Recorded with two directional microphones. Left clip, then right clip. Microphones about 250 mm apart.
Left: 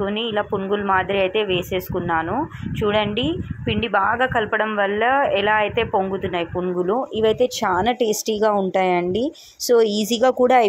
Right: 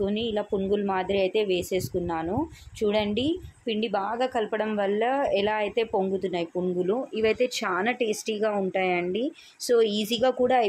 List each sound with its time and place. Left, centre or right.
0.0 s a woman's voice: centre
6.9 s speech: centre